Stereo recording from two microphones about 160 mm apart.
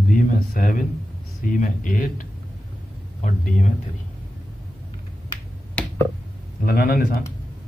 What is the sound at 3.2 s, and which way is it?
Speech, 50° left (ahead or behind).